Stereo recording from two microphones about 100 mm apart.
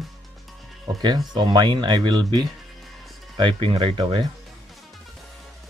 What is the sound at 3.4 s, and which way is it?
Speech, 60° right (ahead or behind).